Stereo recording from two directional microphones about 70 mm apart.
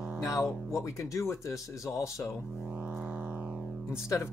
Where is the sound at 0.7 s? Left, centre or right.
Left.